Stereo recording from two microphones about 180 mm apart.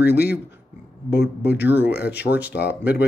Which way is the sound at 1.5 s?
10° right (ahead or behind).